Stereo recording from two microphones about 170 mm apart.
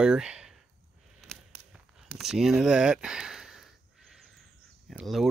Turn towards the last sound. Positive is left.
turn(degrees=0)  # may be behind; listen again after turning